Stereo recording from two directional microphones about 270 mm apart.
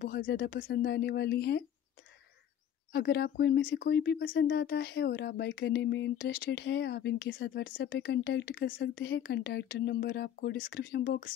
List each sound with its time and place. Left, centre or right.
0.0 s speech: left
2.9 s speech: left